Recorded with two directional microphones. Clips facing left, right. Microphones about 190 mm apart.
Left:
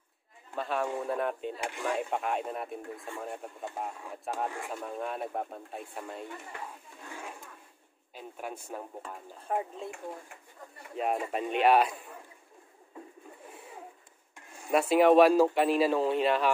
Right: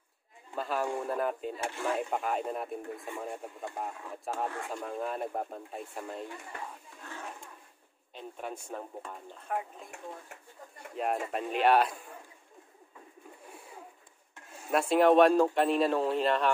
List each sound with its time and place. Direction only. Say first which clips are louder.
0.6 s speech: even; centre (ahead or behind)
1.6 s speech: even; 15° left (ahead or behind)
1.9 s speech: even; centre (ahead or behind)
7.1 s a sound: even; 10° left (ahead or behind)
8.1 s speech: even; 5° left (ahead or behind)
9.3 s speech: left 3 dB; 30° left (ahead or behind)
11.0 s speech: left 1 dB; centre (ahead or behind)
14.7 s speech: left 1 dB; 5° left (ahead or behind)